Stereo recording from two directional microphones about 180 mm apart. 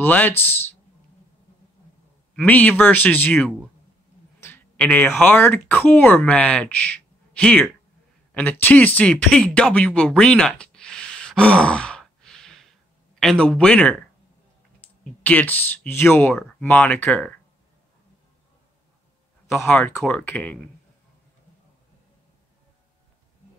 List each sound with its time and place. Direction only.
0.0 s speech: 10° left (ahead or behind)
2.3 s speech: 10° left (ahead or behind)
19.6 s speech: 5° left (ahead or behind)